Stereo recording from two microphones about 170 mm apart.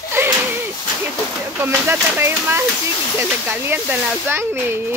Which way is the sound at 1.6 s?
15° right (ahead or behind).